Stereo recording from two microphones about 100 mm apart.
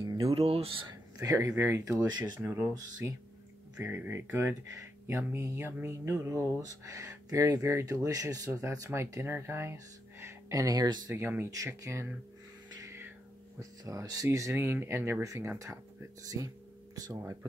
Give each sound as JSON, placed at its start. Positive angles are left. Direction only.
{"t": 0.3, "sound": "speech", "side_deg": -75}
{"t": 1.1, "sound": "speech", "side_deg": -35}
{"t": 1.5, "sound": "speech", "side_deg": -25}
{"t": 11.1, "sound": "speech", "side_deg": -25}
{"t": 12.8, "sound": "a sound", "side_deg": -25}
{"t": 13.6, "sound": "speech", "side_deg": -35}
{"t": 16.3, "sound": "a sound", "side_deg": -35}
{"t": 17.2, "sound": "speech", "side_deg": -30}